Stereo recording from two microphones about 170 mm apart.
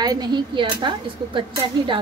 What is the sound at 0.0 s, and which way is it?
Speech, 25° right (ahead or behind).